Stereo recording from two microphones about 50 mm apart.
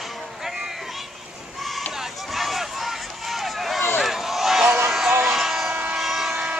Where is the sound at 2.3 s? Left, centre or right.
Centre.